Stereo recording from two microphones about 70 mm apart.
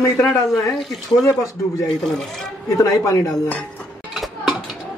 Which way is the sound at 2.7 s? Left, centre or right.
Left.